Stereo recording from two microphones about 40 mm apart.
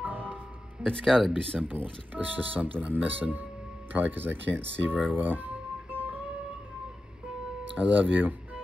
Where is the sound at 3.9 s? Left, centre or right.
Right.